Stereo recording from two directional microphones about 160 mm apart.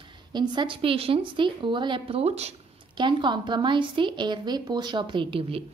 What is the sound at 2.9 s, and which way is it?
A woman's voice, 30° right (ahead or behind).